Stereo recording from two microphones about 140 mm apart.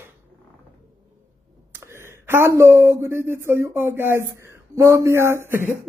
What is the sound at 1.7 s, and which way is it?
Speech, 20° right (ahead or behind).